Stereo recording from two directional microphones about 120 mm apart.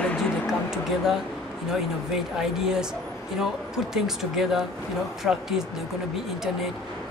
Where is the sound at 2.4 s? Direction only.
5° right (ahead or behind).